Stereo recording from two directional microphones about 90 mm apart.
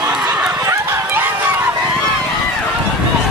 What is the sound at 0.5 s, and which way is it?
Run, 35° right (ahead or behind).